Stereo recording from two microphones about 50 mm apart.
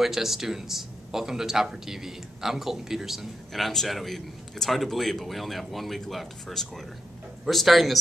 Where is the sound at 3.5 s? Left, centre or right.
Centre.